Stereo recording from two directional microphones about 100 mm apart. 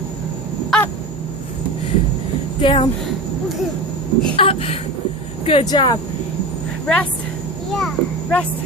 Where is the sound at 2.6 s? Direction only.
60° left (ahead or behind).